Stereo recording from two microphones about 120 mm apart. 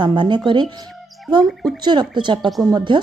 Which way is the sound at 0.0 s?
40° right (ahead or behind).